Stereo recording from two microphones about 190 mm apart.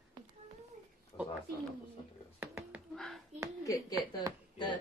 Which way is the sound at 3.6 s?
20° left (ahead or behind).